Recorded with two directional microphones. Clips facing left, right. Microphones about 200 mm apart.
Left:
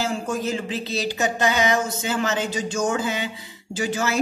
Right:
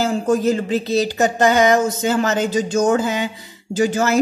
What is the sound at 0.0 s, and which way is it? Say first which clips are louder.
Speech: right 8 dB; 40° right (ahead or behind).